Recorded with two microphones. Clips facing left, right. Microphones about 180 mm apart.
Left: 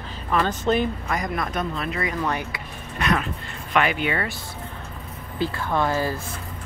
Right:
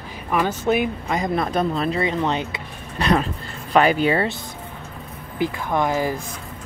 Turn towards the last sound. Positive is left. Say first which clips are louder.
# right 2 dB
turn(degrees=-15)  # may be behind; listen again after turning